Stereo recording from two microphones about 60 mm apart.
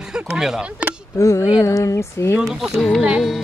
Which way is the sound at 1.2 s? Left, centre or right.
Left.